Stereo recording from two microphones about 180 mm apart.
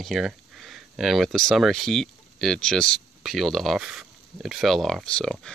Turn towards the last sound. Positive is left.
turn(degrees=5)  # may be behind; listen again after turning